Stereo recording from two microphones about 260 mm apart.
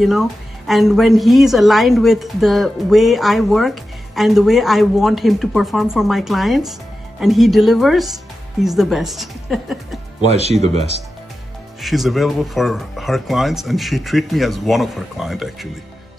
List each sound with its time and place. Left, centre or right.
0.0 s a woman's voice: centre
10.2 s speech: right
11.8 s a woman's voice: centre